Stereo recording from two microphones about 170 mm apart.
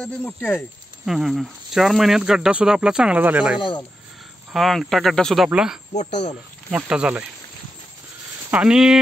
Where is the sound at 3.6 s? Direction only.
30° left (ahead or behind).